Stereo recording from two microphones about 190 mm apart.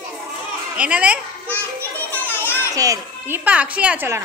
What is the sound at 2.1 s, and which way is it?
Children playing, 10° left (ahead or behind).